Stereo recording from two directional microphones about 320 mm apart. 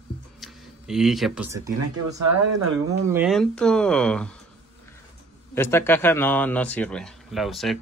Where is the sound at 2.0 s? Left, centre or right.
Right.